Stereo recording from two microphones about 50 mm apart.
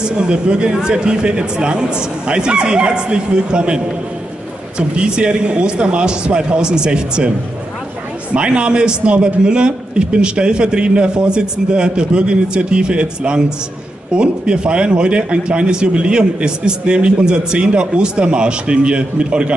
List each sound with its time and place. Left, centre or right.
0.0 s a man's voice: centre
8.3 s a man's voice: centre